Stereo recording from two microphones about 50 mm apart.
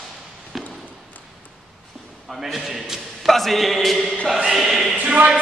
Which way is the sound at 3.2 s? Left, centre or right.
Centre.